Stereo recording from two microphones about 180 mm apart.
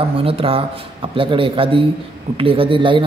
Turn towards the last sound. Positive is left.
turn(degrees=-30)  # may be behind; listen again after turning